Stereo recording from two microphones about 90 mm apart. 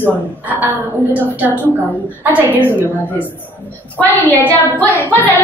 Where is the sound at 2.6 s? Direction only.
25° left (ahead or behind).